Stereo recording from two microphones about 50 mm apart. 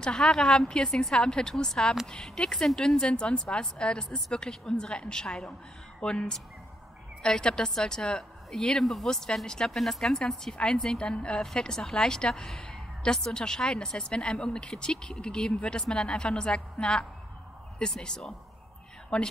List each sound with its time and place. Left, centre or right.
0.0 s a woman's voice: centre
19.1 s a woman's voice: left